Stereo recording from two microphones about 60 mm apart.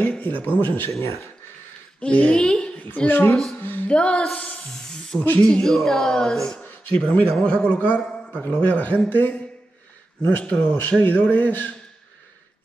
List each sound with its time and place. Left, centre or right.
0.0 s speech: left
1.0 s speech: left
2.0 s a woman's voice: left
3.1 s speech: left
3.9 s speech: centre
4.8 s spray: centre
5.4 s speech: centre
7.0 s speech: centre; by 9.4 s left
10.4 s speech: left